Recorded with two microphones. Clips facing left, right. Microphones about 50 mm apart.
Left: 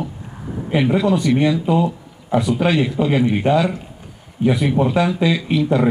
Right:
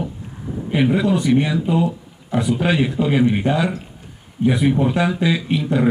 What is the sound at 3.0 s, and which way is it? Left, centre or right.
Speech, centre.